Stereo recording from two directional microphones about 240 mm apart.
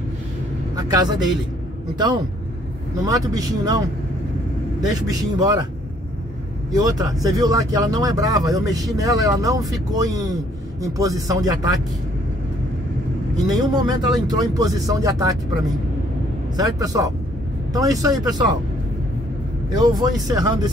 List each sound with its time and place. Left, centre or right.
0.7 s vehicle: centre
3.1 s speech: centre
4.9 s speech: centre
6.7 s speech: centre
13.6 s speech: centre
19.7 s speech: centre